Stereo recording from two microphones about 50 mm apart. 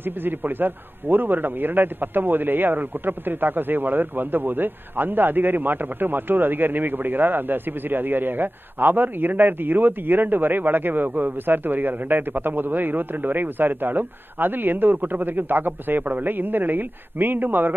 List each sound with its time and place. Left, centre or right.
0.2 s a man's voice: right